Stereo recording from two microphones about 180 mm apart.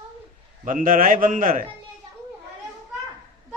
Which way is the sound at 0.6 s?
50° right (ahead or behind).